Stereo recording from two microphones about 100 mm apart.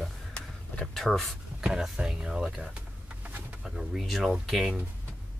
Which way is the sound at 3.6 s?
5° right (ahead or behind).